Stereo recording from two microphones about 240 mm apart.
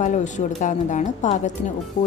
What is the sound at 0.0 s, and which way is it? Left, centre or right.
A woman's voice, left.